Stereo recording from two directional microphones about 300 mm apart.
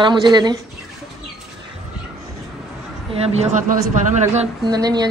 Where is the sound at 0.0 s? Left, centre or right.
Centre.